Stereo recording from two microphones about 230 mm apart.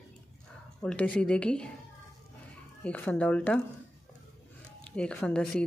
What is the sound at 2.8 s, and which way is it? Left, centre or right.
Speech, centre.